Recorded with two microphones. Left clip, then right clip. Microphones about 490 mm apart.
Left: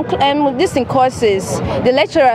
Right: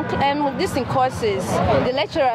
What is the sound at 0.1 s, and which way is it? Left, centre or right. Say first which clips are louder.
Speech: left 6 dB; left.